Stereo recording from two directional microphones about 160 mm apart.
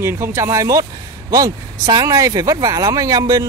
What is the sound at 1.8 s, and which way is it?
Speech, 25° right (ahead or behind).